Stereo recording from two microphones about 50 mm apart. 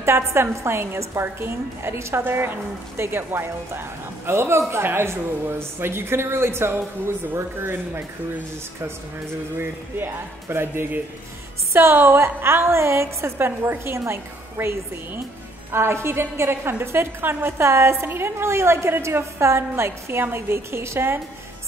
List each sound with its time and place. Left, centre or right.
0.0 s a woman's voice: right
2.2 s a woman's voice: right
9.6 s a woman's voice: right
16.8 s a woman's voice: right
17.2 s a woman's voice: right
17.6 s a woman's voice: right
18.0 s a woman's voice: right